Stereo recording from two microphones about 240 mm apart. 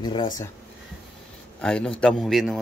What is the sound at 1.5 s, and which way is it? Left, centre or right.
A man's voice, centre.